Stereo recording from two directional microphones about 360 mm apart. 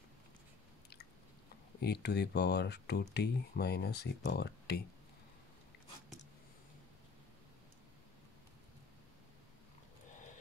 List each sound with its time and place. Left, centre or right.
1.8 s speech: left